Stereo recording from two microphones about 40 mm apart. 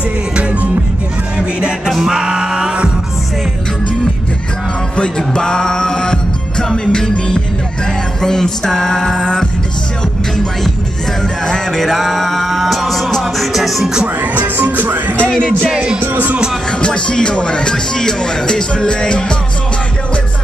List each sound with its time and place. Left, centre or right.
0.4 s music: right
1.9 s music: centre
4.9 s music: left
6.7 s speech: centre
8.2 s a sound: centre
11.4 s music: centre
14.2 s speech: right
16.8 s speech: left